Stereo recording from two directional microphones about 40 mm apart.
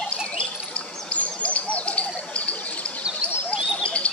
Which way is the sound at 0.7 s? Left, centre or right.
Left.